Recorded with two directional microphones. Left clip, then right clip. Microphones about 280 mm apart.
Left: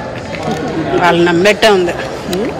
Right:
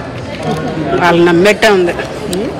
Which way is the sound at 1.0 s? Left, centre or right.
Centre.